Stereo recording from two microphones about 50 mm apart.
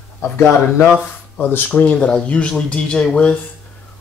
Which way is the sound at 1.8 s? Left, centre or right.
Left.